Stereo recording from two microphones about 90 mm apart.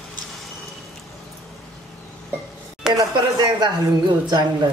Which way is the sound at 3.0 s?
50° right (ahead or behind).